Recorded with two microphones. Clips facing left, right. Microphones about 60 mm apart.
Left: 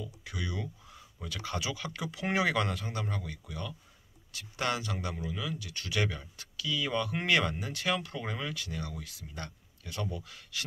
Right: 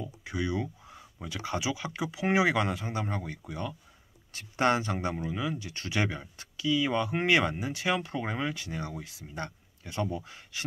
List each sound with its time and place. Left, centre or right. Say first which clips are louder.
0.0 s speech: right 6 dB; right